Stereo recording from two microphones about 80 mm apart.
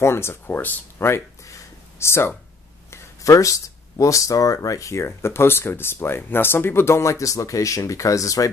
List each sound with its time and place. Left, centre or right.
0.0 s speech: left